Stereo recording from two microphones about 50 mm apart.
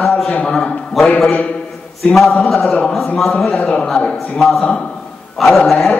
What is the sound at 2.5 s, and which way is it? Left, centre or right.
Speech, left.